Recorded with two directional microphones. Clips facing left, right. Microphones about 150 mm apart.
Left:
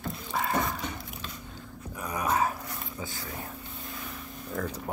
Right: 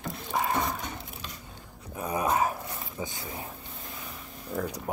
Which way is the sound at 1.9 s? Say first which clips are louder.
Right 2 dB; 25° right (ahead or behind).